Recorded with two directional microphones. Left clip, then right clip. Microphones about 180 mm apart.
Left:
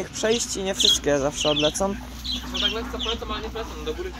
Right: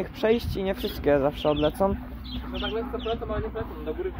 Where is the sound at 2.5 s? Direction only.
35° right (ahead or behind).